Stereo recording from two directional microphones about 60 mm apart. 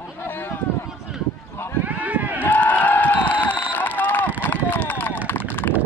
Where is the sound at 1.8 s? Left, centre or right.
Right.